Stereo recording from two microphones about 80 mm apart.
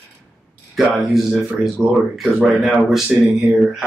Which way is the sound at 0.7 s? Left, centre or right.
Centre.